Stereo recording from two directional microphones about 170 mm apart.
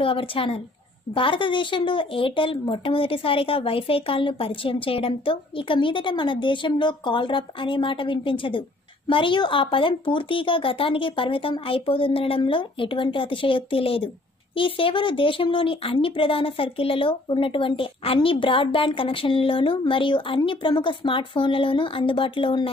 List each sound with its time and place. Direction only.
0.0 s speech: 30° left (ahead or behind)